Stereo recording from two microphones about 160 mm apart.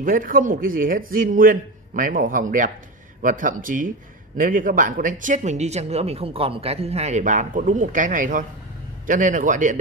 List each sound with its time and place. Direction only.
0.0 s a man's voice: 60° right (ahead or behind)